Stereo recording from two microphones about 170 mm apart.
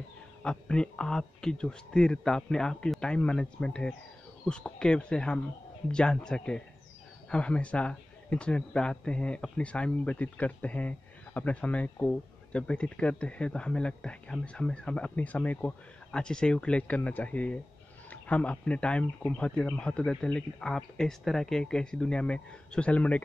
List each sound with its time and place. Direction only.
0.4 s speech: 5° left (ahead or behind)